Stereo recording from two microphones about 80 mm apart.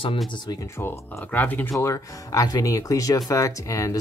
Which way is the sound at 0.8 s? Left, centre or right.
Left.